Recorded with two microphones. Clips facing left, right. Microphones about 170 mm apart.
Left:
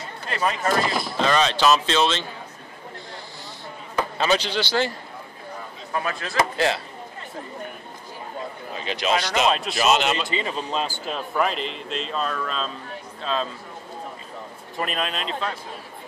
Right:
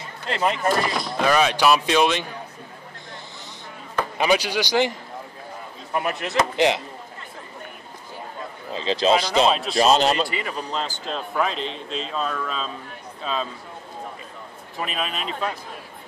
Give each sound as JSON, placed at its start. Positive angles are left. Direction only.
{"t": 0.3, "sound": "speech", "side_deg": -20}
{"t": 0.7, "sound": "a man's voice", "side_deg": 0}
{"t": 1.1, "sound": "speech", "side_deg": -10}
{"t": 4.2, "sound": "speech", "side_deg": -10}
{"t": 5.9, "sound": "speech", "side_deg": -20}
{"t": 8.7, "sound": "speech", "side_deg": -30}
{"t": 9.5, "sound": "a man's voice", "side_deg": 0}
{"t": 9.8, "sound": "speech", "side_deg": -35}
{"t": 10.2, "sound": "a man's voice", "side_deg": 25}
{"t": 14.8, "sound": "a man's voice", "side_deg": -5}